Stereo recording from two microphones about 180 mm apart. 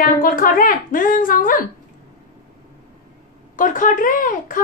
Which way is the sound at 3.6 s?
50° left (ahead or behind).